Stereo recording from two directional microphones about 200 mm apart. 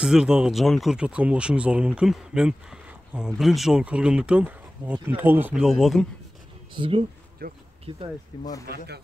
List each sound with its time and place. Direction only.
0.0 s speech: 5° right (ahead or behind)
6.7 s speech: 25° right (ahead or behind)
7.4 s speech: 45° right (ahead or behind)
8.6 s speech: 55° right (ahead or behind)